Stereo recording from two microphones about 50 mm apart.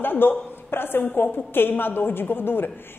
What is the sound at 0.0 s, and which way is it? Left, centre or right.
A woman's voice, left.